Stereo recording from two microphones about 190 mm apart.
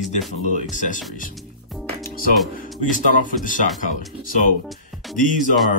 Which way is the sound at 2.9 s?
45° left (ahead or behind).